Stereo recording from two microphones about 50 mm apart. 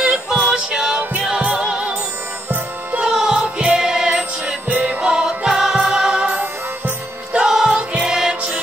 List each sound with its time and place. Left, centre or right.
0.0 s music: centre
2.5 s music: right
3.1 s music: centre
7.6 s music: right